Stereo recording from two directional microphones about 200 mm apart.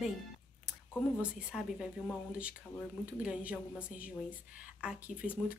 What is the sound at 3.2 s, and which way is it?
Speech, 5° right (ahead or behind).